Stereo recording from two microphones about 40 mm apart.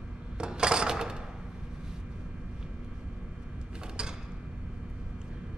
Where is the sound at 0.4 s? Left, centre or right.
Right.